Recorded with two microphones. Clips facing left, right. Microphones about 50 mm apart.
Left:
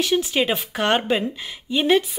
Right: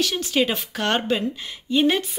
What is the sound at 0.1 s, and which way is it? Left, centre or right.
Speech, centre.